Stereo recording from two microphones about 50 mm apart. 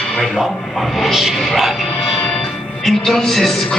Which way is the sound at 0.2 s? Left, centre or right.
Centre.